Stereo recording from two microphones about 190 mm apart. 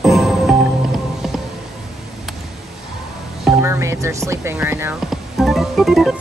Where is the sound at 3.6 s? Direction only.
15° right (ahead or behind).